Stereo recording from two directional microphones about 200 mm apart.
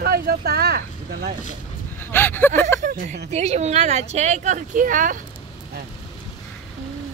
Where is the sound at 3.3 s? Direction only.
35° right (ahead or behind).